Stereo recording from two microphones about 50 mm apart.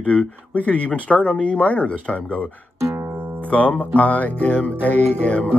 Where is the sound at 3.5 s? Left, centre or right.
Left.